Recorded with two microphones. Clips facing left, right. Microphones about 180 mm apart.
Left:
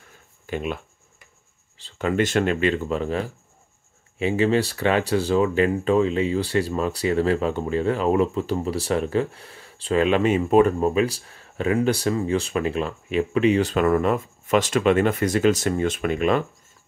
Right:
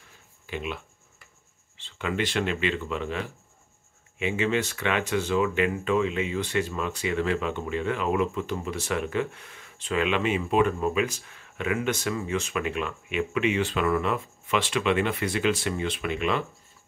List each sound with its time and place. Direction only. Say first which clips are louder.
0.5 s speech: left 6 dB; 45° left (ahead or behind)
1.8 s speech: left 7 dB; 40° left (ahead or behind)